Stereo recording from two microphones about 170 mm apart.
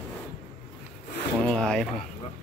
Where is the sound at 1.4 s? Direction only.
5° left (ahead or behind).